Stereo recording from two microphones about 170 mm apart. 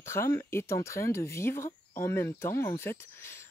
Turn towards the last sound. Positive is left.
turn(degrees=15)  # may be behind; listen again after turning